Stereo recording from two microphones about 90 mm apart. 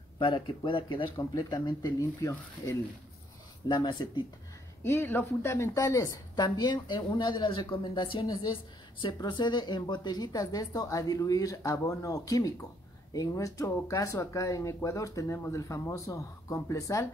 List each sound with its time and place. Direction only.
0.2 s speech: 70° left (ahead or behind)
1.1 s speech: 50° left (ahead or behind); by 2.8 s 35° left (ahead or behind)
3.6 s a woman's voice: 60° left (ahead or behind)
4.8 s speech: 25° left (ahead or behind)
5.8 s a woman's voice: 40° left (ahead or behind); by 8.3 s 65° left (ahead or behind)
8.3 s speech: 45° left (ahead or behind)
9.0 s speech: 60° left (ahead or behind); by 17.1 s 35° left (ahead or behind)